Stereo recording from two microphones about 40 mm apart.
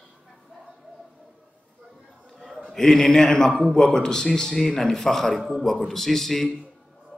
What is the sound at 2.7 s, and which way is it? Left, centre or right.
A man's voice, centre.